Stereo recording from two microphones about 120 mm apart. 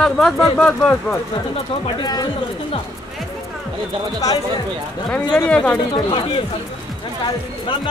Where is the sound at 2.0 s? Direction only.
35° left (ahead or behind).